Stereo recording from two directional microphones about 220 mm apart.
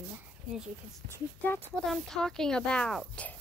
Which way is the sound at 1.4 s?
Centre (ahead or behind).